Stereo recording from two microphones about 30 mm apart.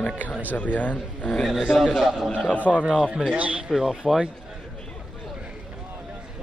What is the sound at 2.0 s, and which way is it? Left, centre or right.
Speech, right.